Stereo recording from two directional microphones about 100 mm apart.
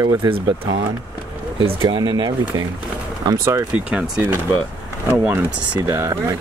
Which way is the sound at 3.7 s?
10° right (ahead or behind).